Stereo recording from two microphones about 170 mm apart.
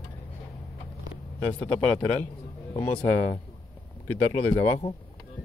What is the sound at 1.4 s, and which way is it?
A man's voice, 10° left (ahead or behind).